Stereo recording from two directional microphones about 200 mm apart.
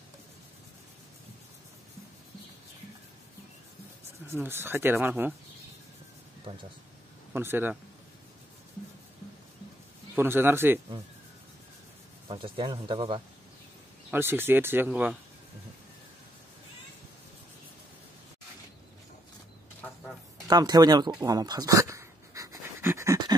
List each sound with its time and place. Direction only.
4.3 s speech: 10° right (ahead or behind)
7.3 s speech: 10° right (ahead or behind)
10.1 s speech: 10° right (ahead or behind)
12.3 s speech: 25° right (ahead or behind)
14.1 s speech: 10° right (ahead or behind)
20.4 s a sound: 20° right (ahead or behind)